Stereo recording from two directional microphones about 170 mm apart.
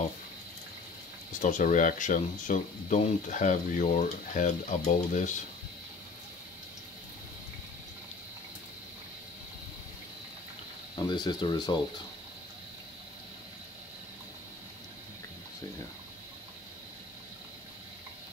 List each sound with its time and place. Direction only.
1.4 s speech: 50° left (ahead or behind)
11.0 s speech: 25° left (ahead or behind)